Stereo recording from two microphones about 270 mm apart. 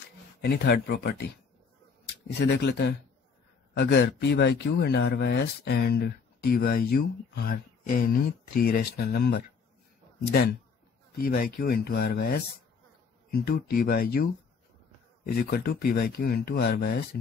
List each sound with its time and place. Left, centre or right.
0.4 s speech: left
2.3 s speech: left
11.1 s speech: left